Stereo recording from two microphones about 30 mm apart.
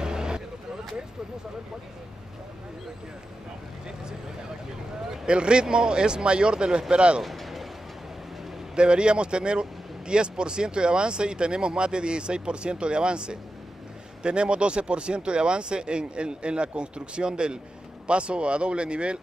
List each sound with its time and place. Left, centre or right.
0.0 s vehicle: right
5.2 s speech: right
7.2 s a sound: centre
8.7 s speech: right